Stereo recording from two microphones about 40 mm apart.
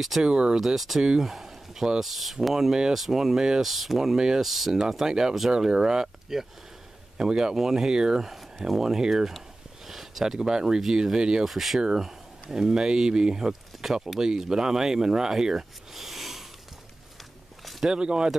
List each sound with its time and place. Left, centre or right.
0.2 s speech: right
0.6 s speech: centre
3.6 s speech: centre
8.3 s speech: centre
11.4 s speech: centre
17.6 s a sound: centre
17.9 s speech: right